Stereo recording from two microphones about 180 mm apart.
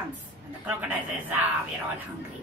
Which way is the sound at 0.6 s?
10° right (ahead or behind).